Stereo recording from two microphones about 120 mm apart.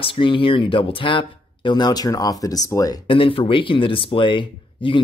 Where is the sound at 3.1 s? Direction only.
50° left (ahead or behind).